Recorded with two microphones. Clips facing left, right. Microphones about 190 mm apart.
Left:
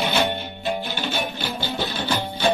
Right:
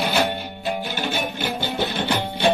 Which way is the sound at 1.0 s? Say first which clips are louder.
Right 2 dB; 20° right (ahead or behind).